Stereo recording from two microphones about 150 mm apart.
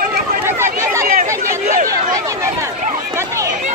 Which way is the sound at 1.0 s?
70° right (ahead or behind).